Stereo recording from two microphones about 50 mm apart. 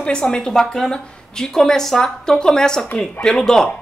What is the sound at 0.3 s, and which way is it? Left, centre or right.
Speech, centre.